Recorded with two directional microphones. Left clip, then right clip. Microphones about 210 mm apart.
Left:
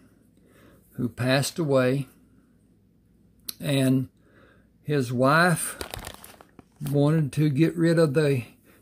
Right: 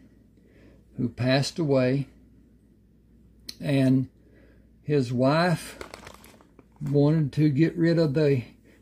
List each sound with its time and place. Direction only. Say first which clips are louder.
0.9 s speech: even; 30° left (ahead or behind)
3.5 s speech: even; 30° left (ahead or behind)